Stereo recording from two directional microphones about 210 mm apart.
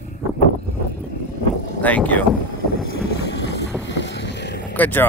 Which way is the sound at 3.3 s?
55° left (ahead or behind).